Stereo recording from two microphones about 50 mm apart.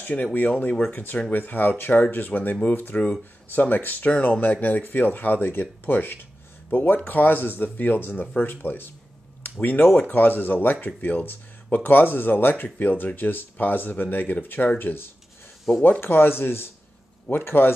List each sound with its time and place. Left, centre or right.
0.0 s speech: left
4.1 s speech: left
4.4 s speech: left
9.4 s a sound: left
10.0 s speech: left
15.7 s speech: centre
16.0 s speech: left